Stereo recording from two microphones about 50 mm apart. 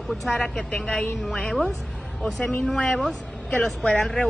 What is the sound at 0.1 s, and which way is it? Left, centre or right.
Speech, centre.